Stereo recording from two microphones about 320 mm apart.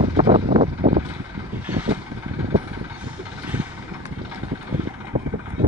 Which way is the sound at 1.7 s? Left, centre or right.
Centre.